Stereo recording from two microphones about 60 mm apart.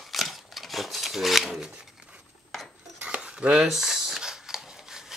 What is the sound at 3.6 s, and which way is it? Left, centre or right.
Shuffling cards, centre.